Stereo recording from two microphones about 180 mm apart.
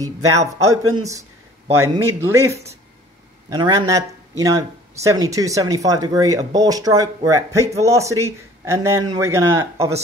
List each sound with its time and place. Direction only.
0.5 s speech: 20° right (ahead or behind)